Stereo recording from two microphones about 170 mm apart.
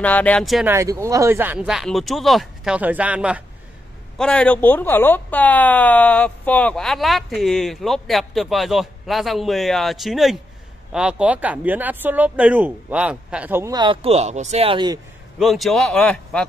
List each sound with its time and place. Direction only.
0.0 s speech: 10° left (ahead or behind)
0.7 s speech: 15° right (ahead or behind)
4.2 s speech: 5° left (ahead or behind); by 13.7 s 15° right (ahead or behind)
13.7 s speech: 30° right (ahead or behind)
15.3 s speech: centre (ahead or behind)